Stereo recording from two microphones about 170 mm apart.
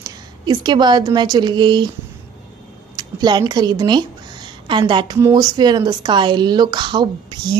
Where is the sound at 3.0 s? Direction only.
25° right (ahead or behind).